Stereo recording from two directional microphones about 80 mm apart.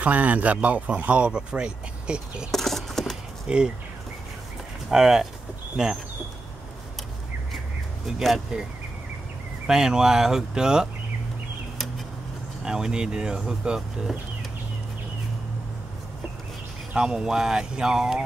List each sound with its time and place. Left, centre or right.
0.0 s speech: centre
2.5 s a sound: centre
3.4 s speech: centre
4.9 s speech: centre
8.2 s speech: centre
9.7 s speech: centre
12.6 s speech: centre
16.9 s speech: centre